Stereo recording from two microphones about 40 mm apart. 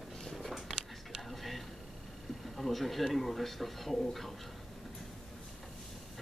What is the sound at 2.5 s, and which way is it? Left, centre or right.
Speech, centre.